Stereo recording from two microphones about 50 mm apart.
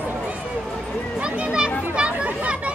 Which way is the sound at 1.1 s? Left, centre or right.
Right.